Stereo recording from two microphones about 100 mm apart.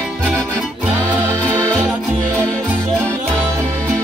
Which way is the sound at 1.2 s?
25° right (ahead or behind).